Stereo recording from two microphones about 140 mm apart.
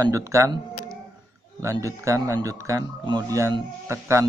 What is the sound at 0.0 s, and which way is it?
A man's voice, 20° right (ahead or behind).